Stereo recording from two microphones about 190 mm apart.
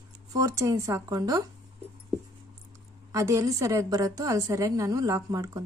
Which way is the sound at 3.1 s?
15° right (ahead or behind).